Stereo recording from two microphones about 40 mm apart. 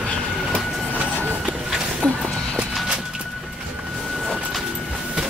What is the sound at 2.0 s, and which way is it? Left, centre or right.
Music, left.